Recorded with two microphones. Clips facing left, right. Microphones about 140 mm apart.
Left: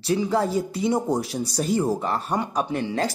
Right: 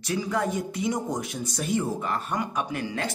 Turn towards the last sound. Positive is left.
turn(degrees=30)  # may be behind; listen again after turning